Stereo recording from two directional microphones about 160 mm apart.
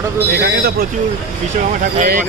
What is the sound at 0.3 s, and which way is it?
Speech, 80° right.